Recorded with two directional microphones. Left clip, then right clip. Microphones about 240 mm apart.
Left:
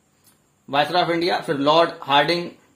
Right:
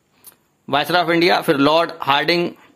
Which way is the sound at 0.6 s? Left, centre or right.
Right.